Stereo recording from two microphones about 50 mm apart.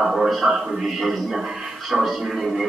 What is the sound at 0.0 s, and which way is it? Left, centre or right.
A man's voice, centre.